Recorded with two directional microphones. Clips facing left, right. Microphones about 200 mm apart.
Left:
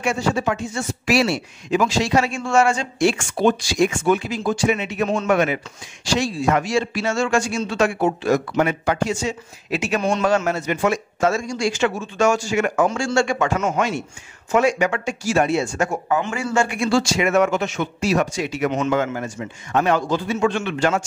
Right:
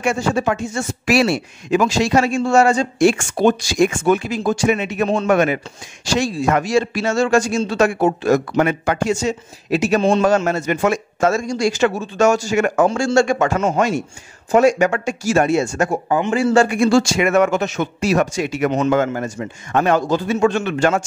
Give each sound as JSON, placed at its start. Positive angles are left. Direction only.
{"t": 0.0, "sound": "speech", "side_deg": -50}
{"t": 16.1, "sound": "a man's voice", "side_deg": -20}
{"t": 16.3, "sound": "speech", "side_deg": -35}